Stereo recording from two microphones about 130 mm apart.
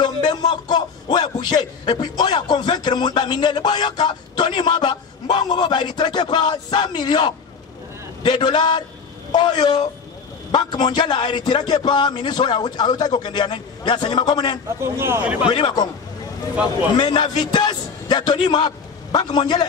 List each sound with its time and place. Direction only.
0.0 s a sound: 35° left (ahead or behind)
1.4 s a man's voice: 35° left (ahead or behind)
14.8 s speech: 20° right (ahead or behind)
15.4 s a man's voice: 35° left (ahead or behind)
16.9 s a man's voice: 35° left (ahead or behind)